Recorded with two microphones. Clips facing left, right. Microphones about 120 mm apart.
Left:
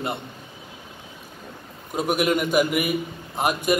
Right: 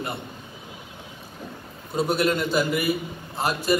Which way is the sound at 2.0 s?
15° left (ahead or behind).